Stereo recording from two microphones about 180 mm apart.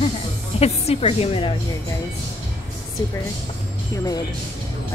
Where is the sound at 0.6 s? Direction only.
35° left (ahead or behind).